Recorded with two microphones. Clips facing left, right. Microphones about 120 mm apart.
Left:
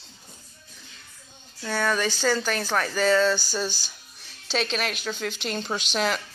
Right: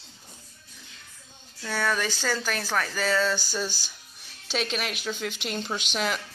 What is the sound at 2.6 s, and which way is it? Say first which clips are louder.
Speech: left 2 dB; 10° left (ahead or behind).